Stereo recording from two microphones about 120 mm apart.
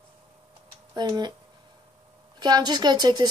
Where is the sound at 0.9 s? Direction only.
35° right (ahead or behind).